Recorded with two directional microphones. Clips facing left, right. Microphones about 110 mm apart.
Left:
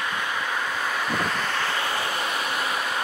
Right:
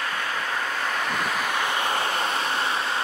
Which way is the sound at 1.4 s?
15° right (ahead or behind).